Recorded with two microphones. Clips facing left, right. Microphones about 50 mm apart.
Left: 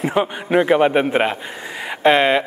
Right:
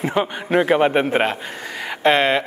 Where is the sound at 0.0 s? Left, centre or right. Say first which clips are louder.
Left 2 dB; centre.